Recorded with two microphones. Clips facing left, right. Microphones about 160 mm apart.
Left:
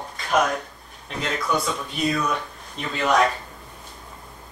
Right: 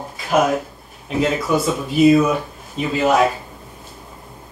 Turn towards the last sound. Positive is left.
turn(degrees=-5)  # may be behind; listen again after turning